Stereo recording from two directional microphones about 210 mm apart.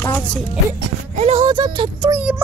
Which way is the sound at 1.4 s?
20° right (ahead or behind).